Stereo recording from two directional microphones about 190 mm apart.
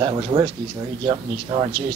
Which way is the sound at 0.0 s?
25° right (ahead or behind).